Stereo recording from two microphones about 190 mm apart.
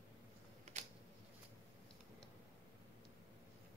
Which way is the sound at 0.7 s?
40° right (ahead or behind).